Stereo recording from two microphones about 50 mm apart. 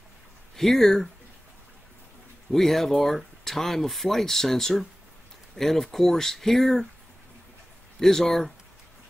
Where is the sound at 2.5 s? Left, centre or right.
Centre.